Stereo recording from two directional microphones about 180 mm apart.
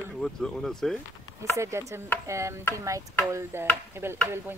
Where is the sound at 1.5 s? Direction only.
15° right (ahead or behind).